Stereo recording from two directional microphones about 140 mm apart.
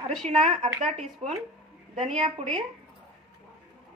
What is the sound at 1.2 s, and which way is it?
Speech, 50° right (ahead or behind).